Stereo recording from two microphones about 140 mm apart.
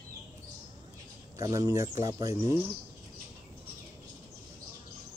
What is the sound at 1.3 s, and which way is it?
Speech, 25° right (ahead or behind).